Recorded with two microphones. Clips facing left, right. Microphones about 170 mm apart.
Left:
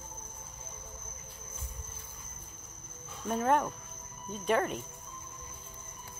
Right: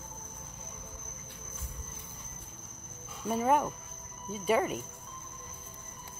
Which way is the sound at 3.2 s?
10° right (ahead or behind).